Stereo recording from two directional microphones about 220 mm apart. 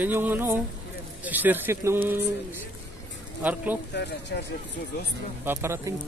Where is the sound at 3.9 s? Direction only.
50° left (ahead or behind).